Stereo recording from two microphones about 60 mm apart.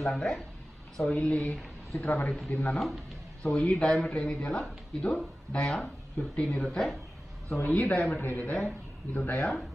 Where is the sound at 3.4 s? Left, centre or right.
Centre.